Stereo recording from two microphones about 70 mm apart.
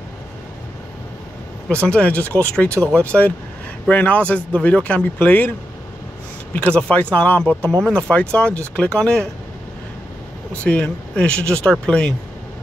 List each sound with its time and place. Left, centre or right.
1.7 s speech: centre
6.5 s speech: centre
10.5 s speech: centre